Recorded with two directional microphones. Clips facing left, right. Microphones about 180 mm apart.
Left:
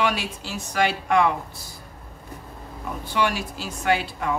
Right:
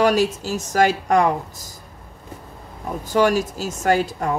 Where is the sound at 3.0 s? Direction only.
40° right (ahead or behind).